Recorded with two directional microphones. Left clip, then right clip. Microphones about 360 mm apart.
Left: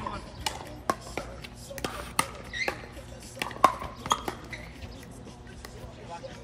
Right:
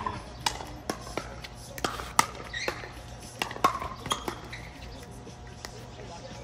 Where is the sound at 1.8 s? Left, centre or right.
Centre.